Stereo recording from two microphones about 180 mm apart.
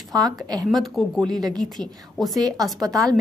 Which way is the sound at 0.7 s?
Centre (ahead or behind).